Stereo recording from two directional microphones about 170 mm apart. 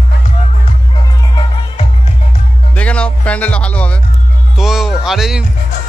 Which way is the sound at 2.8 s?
5° left (ahead or behind).